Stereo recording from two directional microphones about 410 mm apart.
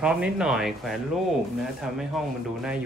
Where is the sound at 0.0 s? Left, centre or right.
Centre.